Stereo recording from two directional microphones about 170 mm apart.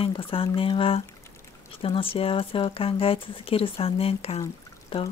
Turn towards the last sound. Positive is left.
turn(degrees=30)  # may be behind; listen again after turning